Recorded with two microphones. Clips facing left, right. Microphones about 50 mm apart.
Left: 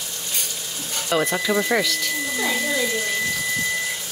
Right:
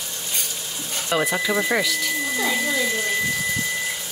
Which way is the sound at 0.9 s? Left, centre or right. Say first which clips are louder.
Even; centre.